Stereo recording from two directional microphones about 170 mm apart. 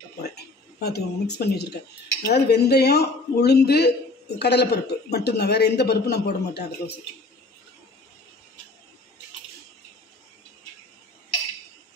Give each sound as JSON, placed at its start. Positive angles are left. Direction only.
{"t": 0.2, "sound": "a man's voice", "side_deg": 70}